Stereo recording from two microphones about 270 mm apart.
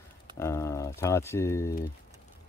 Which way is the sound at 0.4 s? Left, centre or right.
Centre.